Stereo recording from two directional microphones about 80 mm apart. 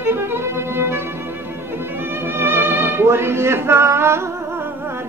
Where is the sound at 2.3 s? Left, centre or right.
Right.